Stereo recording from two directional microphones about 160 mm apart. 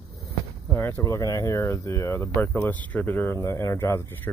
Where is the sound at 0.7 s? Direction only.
15° left (ahead or behind).